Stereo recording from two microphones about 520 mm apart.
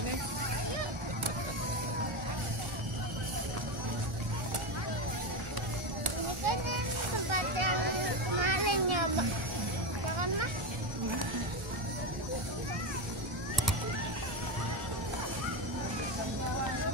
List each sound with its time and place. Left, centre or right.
6.0 s a sound: right
7.2 s vehicle: right
8.4 s children playing: right
10.1 s music: right